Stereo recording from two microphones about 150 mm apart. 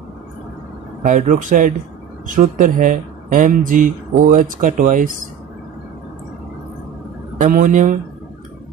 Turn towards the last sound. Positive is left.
turn(degrees=-60)  # may be behind; listen again after turning